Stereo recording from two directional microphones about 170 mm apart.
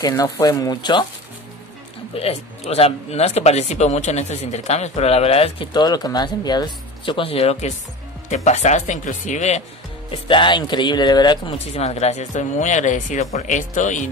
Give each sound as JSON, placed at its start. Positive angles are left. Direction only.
{"t": 0.0, "sound": "speech", "side_deg": 20}
{"t": 2.1, "sound": "speech", "side_deg": 35}
{"t": 10.2, "sound": "speech", "side_deg": 30}
{"t": 11.5, "sound": "speech", "side_deg": 40}